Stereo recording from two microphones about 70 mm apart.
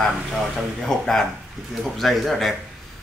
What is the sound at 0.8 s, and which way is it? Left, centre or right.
Speech, centre.